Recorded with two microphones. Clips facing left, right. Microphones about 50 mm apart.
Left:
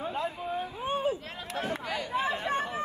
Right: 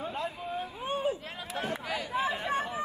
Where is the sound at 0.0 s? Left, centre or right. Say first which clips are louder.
Left 2 dB; centre.